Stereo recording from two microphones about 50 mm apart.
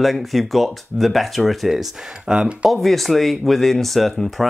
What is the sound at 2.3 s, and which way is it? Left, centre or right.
Speech, centre.